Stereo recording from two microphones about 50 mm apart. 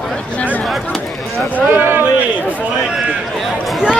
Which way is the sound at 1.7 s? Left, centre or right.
Right.